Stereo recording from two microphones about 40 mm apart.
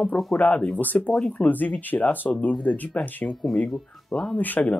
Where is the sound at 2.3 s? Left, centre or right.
Left.